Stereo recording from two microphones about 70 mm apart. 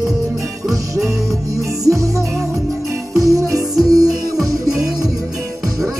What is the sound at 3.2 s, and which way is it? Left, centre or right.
Music, right.